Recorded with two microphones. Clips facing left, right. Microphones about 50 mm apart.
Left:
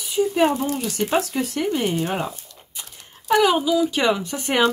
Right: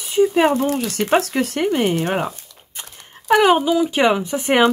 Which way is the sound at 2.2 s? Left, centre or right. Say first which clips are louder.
Right 3 dB; right.